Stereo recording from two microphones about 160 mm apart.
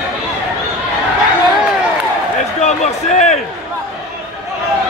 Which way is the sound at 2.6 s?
45° left (ahead or behind).